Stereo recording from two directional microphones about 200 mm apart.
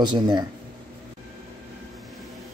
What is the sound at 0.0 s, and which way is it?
Speech, 20° right (ahead or behind).